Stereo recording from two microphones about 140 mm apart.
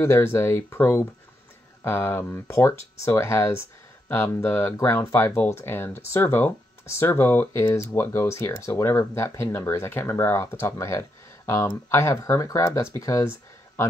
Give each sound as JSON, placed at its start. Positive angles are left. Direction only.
{"t": 0.0, "sound": "speech", "side_deg": 20}